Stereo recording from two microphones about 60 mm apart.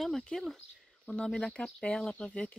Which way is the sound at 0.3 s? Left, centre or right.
Centre.